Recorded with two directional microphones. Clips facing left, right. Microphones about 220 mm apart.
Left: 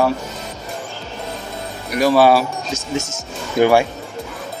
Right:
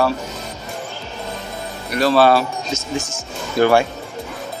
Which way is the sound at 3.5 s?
15° left (ahead or behind).